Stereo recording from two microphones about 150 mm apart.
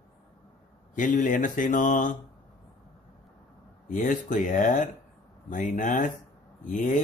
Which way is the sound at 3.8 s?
60° left (ahead or behind).